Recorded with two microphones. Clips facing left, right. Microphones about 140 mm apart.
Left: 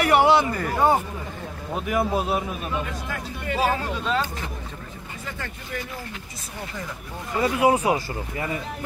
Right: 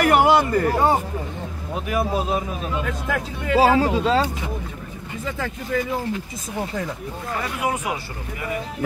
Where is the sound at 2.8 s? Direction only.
90° right.